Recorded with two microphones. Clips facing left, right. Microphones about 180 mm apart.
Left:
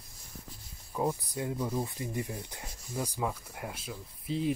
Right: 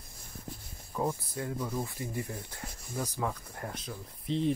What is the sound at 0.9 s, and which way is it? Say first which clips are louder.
Speech: left 1 dB; 15° left (ahead or behind).